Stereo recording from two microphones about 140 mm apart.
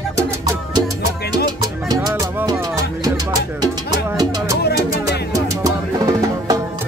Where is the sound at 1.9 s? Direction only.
25° right (ahead or behind).